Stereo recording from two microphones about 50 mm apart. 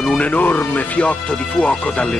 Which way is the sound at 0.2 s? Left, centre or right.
Left.